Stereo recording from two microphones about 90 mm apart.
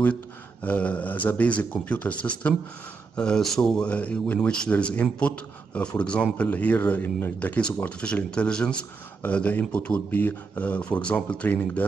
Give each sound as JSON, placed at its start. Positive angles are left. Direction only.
{"t": 0.0, "sound": "a man's voice", "side_deg": 20}
{"t": 3.2, "sound": "a man's voice", "side_deg": 5}